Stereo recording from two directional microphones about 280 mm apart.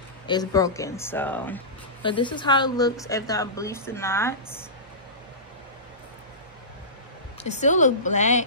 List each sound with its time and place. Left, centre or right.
0.3 s a woman's voice: centre
2.0 s a woman's voice: centre
7.4 s speech: left